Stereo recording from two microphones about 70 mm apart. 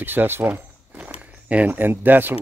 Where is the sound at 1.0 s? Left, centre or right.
Right.